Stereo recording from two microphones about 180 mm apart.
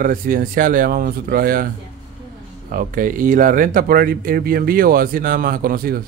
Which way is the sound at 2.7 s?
50° right (ahead or behind).